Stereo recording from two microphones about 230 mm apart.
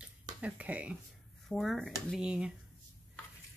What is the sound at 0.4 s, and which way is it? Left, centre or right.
Speech, centre.